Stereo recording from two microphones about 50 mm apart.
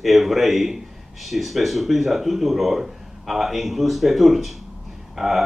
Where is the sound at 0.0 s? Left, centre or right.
Centre.